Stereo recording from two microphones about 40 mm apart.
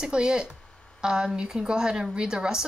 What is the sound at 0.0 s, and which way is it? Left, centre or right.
A woman's voice, right.